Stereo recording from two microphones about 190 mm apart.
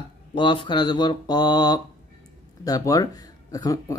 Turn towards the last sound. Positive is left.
turn(degrees=20)  # may be behind; listen again after turning